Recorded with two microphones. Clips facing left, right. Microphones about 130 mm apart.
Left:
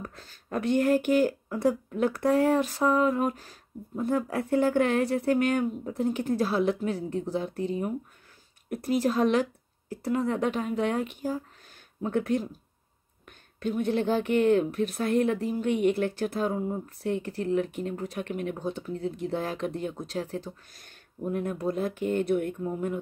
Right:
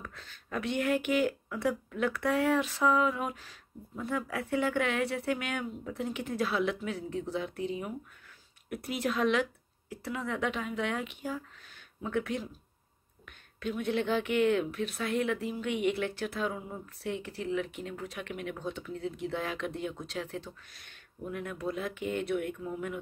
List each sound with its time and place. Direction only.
0.0 s speech: 40° left (ahead or behind)